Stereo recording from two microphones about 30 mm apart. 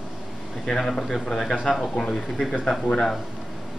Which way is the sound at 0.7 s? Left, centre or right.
Centre.